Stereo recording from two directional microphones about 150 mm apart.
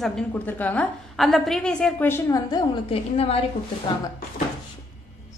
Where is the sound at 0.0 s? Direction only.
10° left (ahead or behind); by 2.8 s 25° left (ahead or behind).